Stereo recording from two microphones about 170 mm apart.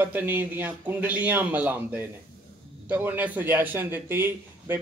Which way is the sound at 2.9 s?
10° right (ahead or behind).